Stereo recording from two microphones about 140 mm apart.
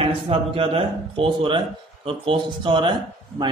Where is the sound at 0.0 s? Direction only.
40° right (ahead or behind).